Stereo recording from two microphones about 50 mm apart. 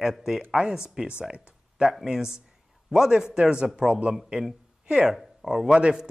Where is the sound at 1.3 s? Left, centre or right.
Right.